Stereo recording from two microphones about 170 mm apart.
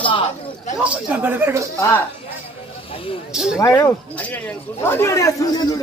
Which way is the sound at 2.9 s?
30° left (ahead or behind).